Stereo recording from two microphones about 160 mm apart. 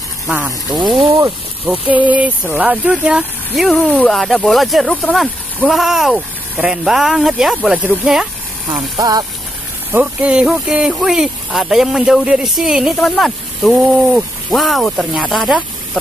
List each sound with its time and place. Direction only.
0.3 s speech: 10° right (ahead or behind)
0.7 s speech: 30° right (ahead or behind)
1.7 s speech: 10° right (ahead or behind)
8.9 s speech: 25° right (ahead or behind)
9.9 s speech: 5° right (ahead or behind)